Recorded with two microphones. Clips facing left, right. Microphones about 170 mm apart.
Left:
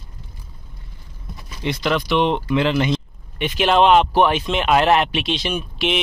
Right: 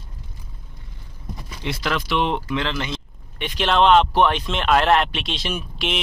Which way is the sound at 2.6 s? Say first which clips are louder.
Left 8 dB; 15° left (ahead or behind).